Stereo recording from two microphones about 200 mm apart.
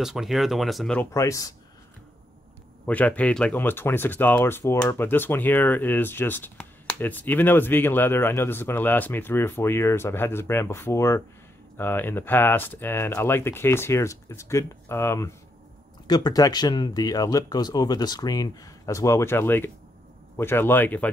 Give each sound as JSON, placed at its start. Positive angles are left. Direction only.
{"t": 0.0, "sound": "speech", "side_deg": 0}
{"t": 1.1, "sound": "speech", "side_deg": 15}
{"t": 2.9, "sound": "speech", "side_deg": 5}